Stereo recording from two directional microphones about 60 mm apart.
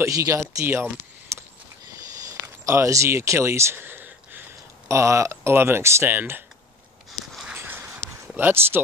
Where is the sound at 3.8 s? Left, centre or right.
Right.